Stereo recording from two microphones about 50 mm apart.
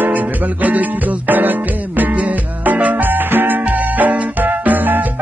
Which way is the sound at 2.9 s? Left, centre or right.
Right.